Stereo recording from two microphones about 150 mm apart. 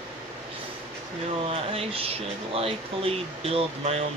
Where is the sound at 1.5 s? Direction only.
40° right (ahead or behind).